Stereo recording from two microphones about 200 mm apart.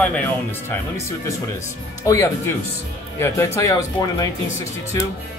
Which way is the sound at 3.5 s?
15° left (ahead or behind).